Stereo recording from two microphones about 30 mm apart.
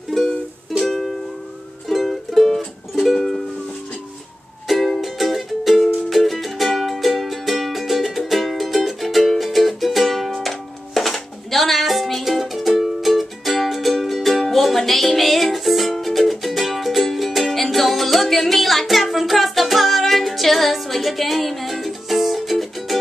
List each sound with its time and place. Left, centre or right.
0.1 s music: centre
4.6 s music: centre